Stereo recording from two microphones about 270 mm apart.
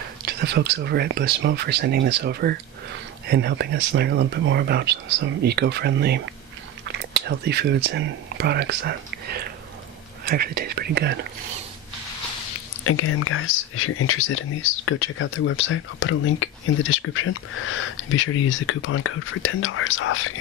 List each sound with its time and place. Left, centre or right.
0.2 s speech: right
12.8 s speech: left